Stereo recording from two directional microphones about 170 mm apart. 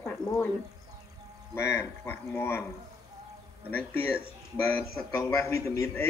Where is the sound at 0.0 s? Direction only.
15° left (ahead or behind).